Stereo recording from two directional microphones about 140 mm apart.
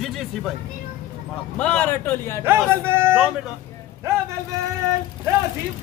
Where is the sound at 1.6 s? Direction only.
10° left (ahead or behind).